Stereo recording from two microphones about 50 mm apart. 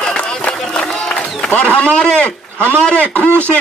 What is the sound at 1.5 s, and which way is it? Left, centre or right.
A man's voice, left.